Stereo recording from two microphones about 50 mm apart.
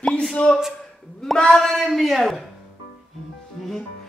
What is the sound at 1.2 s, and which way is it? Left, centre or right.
A man's voice, centre.